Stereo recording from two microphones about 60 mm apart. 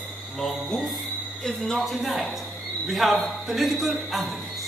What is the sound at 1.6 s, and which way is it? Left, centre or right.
Speech, centre.